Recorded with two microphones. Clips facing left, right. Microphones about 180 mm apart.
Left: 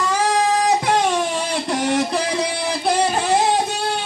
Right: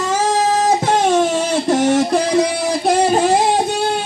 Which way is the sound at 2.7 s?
45° right (ahead or behind).